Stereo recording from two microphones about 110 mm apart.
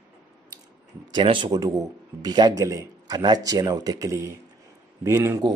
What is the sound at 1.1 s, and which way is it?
Speech, 50° right (ahead or behind).